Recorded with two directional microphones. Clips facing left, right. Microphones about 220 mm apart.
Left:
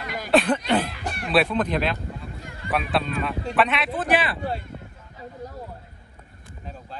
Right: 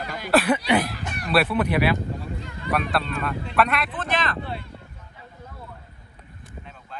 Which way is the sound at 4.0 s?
15° left (ahead or behind).